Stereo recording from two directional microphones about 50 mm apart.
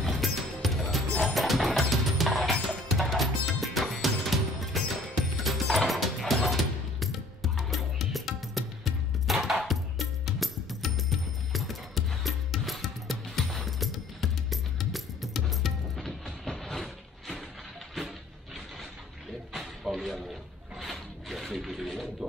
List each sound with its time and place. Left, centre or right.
0.0 s music: centre
19.5 s music: centre
19.9 s a sound: centre